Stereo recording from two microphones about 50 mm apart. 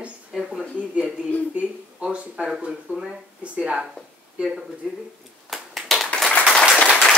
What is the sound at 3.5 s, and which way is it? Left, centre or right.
Speech, centre.